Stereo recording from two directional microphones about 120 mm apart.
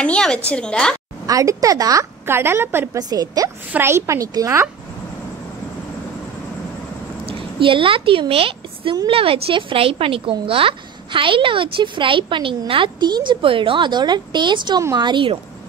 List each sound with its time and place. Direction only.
0.0 s a woman's voice: 5° left (ahead or behind)
1.2 s a woman's voice: 30° right (ahead or behind)
3.0 s a woman's voice: 30° right (ahead or behind)
3.7 s a woman's voice: 20° right (ahead or behind)
7.2 s a woman's voice: 45° right (ahead or behind)